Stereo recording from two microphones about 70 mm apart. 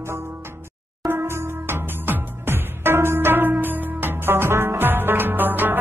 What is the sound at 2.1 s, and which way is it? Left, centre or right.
Music, right.